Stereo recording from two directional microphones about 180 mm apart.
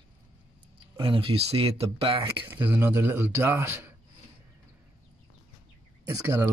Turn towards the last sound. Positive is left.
turn(degrees=-15)  # may be behind; listen again after turning